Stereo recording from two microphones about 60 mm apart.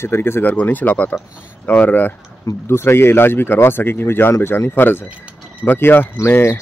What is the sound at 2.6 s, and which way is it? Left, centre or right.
Speech, left.